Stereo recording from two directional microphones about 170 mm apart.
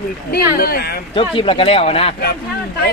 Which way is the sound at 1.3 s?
30° left (ahead or behind).